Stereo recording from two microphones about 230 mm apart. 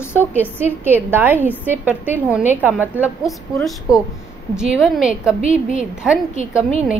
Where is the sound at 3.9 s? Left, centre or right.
Centre.